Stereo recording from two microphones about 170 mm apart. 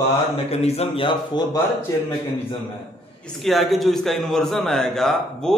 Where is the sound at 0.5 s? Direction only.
40° left (ahead or behind).